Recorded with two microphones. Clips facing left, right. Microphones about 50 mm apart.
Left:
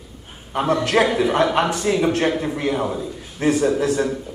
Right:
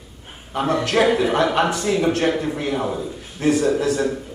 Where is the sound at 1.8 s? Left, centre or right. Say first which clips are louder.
Left 1 dB; centre.